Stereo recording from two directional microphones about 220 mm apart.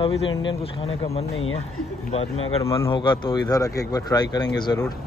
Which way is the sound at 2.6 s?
15° left (ahead or behind).